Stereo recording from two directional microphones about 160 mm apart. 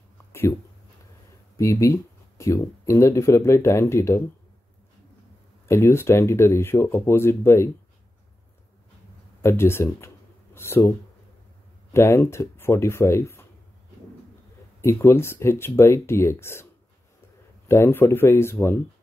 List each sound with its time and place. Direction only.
0.3 s a sound: 15° left (ahead or behind)
1.6 s speech: 20° left (ahead or behind)
5.7 s speech: 15° left (ahead or behind)
9.4 s speech: 15° left (ahead or behind)
11.9 s speech: 15° left (ahead or behind)
14.8 s speech: 15° left (ahead or behind)
17.6 s speech: 15° left (ahead or behind)